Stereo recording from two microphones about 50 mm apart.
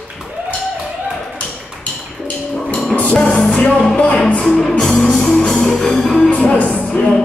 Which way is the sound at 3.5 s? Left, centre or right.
Left.